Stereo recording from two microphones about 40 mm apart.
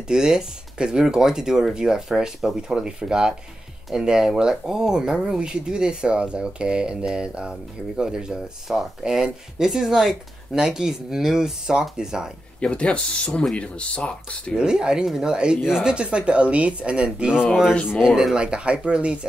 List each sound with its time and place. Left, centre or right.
0.1 s speech: centre
12.5 s speech: left
14.6 s speech: right